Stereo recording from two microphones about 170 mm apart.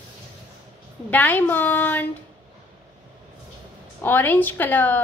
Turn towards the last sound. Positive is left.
turn(degrees=10)  # may be behind; listen again after turning